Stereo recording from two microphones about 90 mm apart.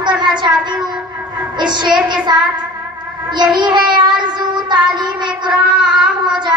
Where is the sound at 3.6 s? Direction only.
55° right (ahead or behind).